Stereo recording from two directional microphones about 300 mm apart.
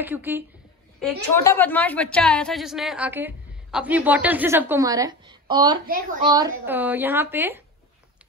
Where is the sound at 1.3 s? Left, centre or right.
Centre.